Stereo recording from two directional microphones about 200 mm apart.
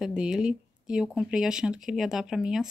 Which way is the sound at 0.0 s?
5° right (ahead or behind).